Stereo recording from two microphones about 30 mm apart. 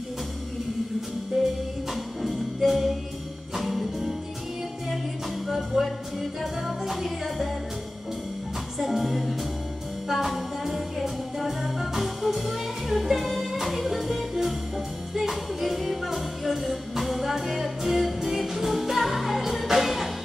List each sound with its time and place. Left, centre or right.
1.3 s music: centre
5.5 s music: centre
8.7 s music: centre